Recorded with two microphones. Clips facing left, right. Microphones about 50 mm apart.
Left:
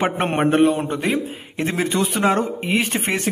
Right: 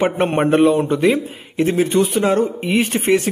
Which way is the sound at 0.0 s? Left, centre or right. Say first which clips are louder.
Right 3 dB; left.